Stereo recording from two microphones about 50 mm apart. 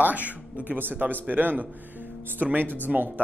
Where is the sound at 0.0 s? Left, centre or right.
Right.